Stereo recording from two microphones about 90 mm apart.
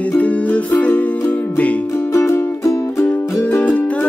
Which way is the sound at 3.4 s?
20° left (ahead or behind).